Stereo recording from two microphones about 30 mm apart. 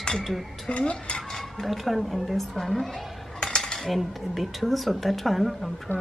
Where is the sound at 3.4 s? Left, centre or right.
Left.